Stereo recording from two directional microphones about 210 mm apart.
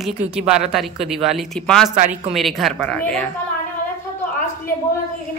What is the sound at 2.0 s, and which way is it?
Speech, 35° right (ahead or behind).